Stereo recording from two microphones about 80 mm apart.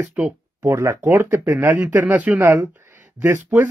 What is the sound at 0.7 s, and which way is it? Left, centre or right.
Speech, right.